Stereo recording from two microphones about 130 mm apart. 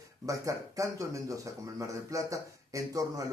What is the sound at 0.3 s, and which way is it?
Speech, 25° right (ahead or behind).